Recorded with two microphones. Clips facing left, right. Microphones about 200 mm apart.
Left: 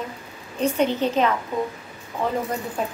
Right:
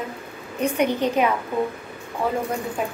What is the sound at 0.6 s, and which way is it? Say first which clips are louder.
Speech: even; 15° right (ahead or behind).